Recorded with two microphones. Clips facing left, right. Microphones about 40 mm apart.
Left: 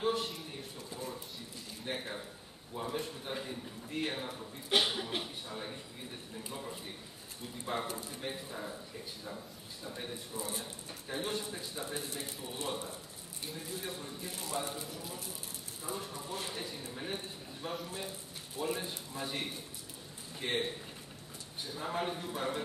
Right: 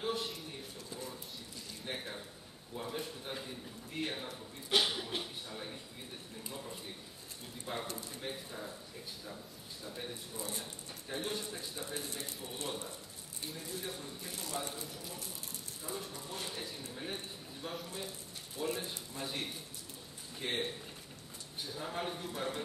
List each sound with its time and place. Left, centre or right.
0.0 s a sound: centre
1.9 s a man's voice: centre
9.8 s a man's voice: centre